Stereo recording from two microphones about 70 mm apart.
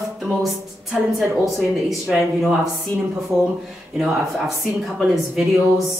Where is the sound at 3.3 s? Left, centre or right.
Right.